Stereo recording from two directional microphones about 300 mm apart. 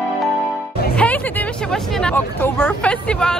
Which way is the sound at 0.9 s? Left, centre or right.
Centre.